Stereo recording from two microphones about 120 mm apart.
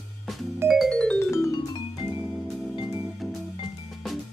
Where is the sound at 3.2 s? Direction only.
Centre (ahead or behind).